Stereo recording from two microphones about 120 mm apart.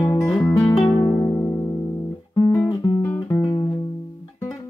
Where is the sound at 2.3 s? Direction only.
30° left (ahead or behind).